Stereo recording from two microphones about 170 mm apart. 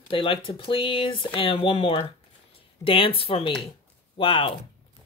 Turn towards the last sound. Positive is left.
turn(degrees=30)  # may be behind; listen again after turning